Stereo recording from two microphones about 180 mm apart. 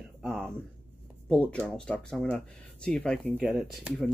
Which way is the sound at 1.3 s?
5° left (ahead or behind).